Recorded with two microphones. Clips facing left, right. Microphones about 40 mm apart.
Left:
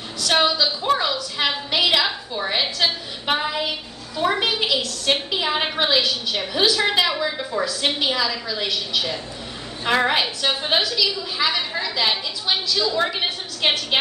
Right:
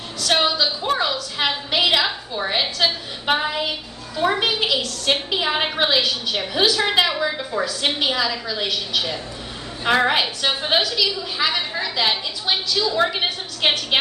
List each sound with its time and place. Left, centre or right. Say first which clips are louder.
0.2 s a woman's voice: even; centre